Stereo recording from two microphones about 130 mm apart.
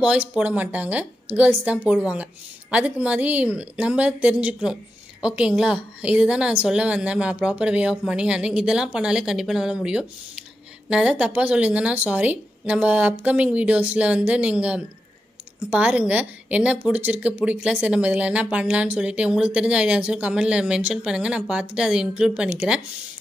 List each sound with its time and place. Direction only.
0.0 s speech: 10° right (ahead or behind)